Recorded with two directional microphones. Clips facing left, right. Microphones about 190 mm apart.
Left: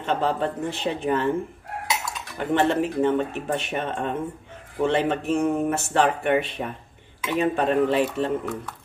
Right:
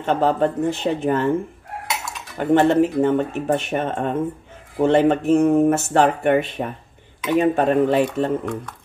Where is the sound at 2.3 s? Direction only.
45° right (ahead or behind).